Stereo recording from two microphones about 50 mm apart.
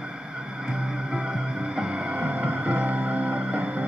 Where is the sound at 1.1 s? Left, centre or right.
Centre.